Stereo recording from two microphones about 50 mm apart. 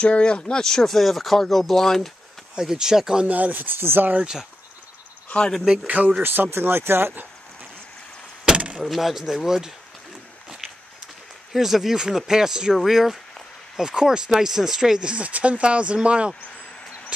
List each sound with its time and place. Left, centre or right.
0.0 s speech: left; by 2.0 s centre
2.5 s speech: centre
3.3 s speech: right
4.2 s speech: centre
5.9 s speech: right
6.2 s speech: right
8.5 s vehicle: right
8.8 s speech: centre
11.5 s speech: centre
15.2 s speech: right